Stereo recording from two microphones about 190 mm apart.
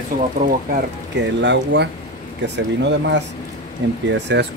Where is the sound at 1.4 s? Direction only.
70° right (ahead or behind).